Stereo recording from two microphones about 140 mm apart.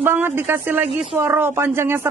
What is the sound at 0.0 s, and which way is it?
Speech, 15° right (ahead or behind).